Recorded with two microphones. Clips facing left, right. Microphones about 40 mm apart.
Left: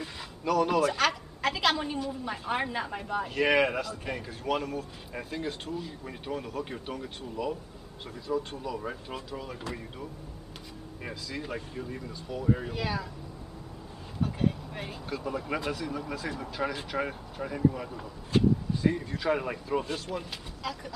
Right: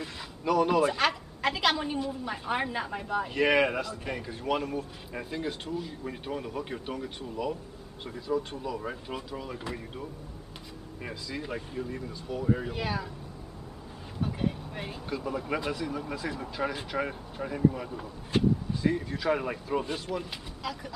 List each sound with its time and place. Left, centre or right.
0.0 s a woman's voice: centre
11.0 s speech: centre
12.7 s speech: centre
14.2 s speech: centre